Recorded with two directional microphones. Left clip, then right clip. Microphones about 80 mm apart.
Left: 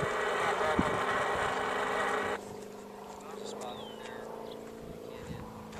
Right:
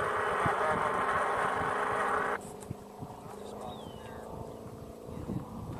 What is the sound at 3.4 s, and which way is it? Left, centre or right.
Vehicle, left.